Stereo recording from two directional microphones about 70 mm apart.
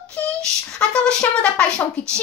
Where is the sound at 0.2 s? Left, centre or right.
Left.